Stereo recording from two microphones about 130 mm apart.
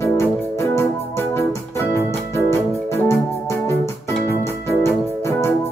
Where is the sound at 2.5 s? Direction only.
20° left (ahead or behind).